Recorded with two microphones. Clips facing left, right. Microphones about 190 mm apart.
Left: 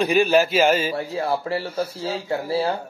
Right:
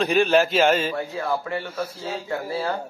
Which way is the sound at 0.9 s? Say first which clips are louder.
Left 2 dB; 35° left (ahead or behind).